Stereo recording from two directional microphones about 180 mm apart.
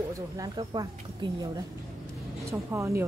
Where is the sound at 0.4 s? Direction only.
20° right (ahead or behind).